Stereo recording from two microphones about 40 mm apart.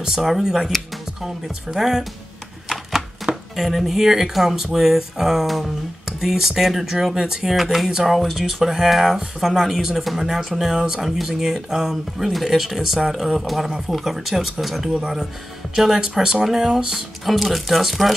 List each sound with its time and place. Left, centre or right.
0.4 s speech: centre
3.5 s speech: centre
15.0 s speech: centre
15.7 s speech: centre